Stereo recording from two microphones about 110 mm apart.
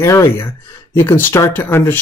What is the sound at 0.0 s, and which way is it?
Speech, 25° left (ahead or behind).